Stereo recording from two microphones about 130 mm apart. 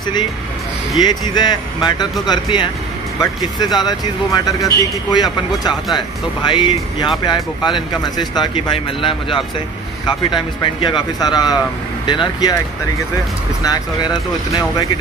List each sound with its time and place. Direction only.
1.3 s speech: 35° left (ahead or behind)
13.7 s speech: 30° left (ahead or behind)